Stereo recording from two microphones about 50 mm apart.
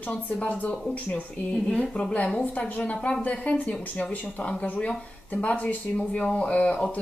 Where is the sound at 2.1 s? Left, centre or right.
Left.